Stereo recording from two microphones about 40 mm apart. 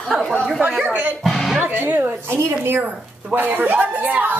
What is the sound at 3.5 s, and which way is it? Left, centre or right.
Speech, right.